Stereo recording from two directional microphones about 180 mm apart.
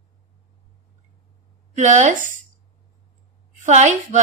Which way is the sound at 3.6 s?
40° right (ahead or behind).